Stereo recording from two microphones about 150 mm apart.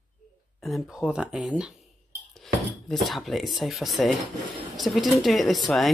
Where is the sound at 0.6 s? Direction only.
Centre (ahead or behind).